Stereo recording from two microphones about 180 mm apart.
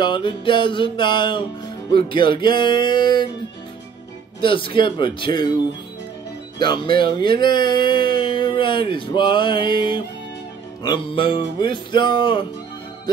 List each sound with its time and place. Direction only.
0.0 s speech: 25° left (ahead or behind)
4.4 s speech: 30° left (ahead or behind)
6.6 s speech: 25° left (ahead or behind)